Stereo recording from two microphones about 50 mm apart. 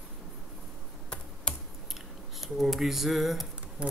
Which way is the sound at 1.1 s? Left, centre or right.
Centre.